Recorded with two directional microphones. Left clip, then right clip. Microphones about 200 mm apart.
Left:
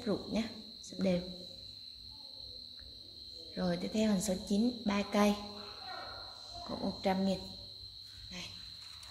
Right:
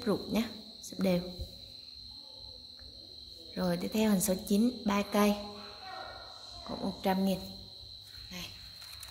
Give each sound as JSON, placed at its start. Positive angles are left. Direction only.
{"t": 0.0, "sound": "insect", "side_deg": -20}
{"t": 0.9, "sound": "a woman's voice", "side_deg": -15}
{"t": 3.5, "sound": "a woman's voice", "side_deg": -15}
{"t": 6.7, "sound": "a woman's voice", "side_deg": -5}